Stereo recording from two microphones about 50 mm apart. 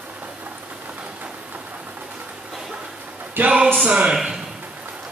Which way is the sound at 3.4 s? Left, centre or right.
Right.